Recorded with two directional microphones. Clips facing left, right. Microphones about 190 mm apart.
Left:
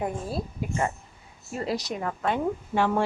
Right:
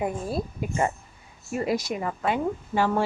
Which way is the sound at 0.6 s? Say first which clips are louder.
Right 2 dB; 20° right (ahead or behind).